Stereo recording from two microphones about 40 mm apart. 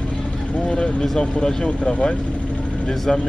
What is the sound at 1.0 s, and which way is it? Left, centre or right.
Speech, centre.